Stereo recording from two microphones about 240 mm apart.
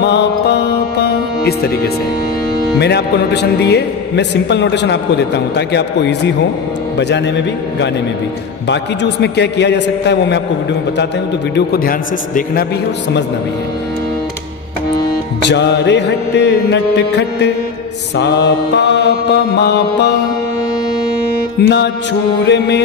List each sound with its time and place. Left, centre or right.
0.0 s music: left
2.8 s a man's voice: left
15.4 s a man's voice: left
21.5 s a man's voice: left